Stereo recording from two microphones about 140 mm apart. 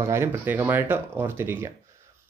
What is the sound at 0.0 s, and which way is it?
Speech, 20° right (ahead or behind).